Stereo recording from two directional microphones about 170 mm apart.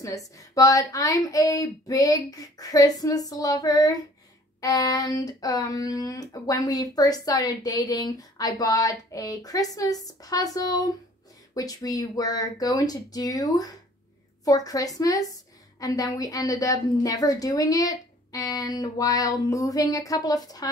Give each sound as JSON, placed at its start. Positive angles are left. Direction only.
{"t": 0.0, "sound": "speech", "side_deg": 20}